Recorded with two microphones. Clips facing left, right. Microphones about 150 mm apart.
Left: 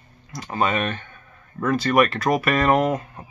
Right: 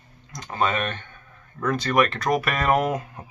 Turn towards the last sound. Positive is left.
turn(degrees=-10)  # may be behind; listen again after turning